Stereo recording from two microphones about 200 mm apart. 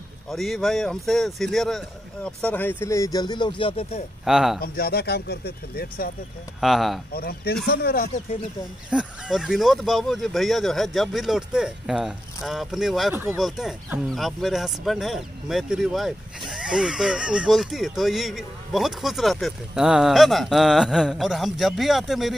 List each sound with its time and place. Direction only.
0.3 s speech: centre (ahead or behind); by 4.0 s 30° left (ahead or behind)
4.2 s a man's voice: centre (ahead or behind)
4.6 s speech: 50° left (ahead or behind)
6.6 s speech: centre (ahead or behind)
7.2 s speech: 50° left (ahead or behind)
8.9 s speech: centre (ahead or behind)